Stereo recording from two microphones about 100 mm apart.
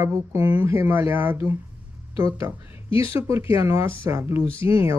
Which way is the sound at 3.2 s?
25° right (ahead or behind).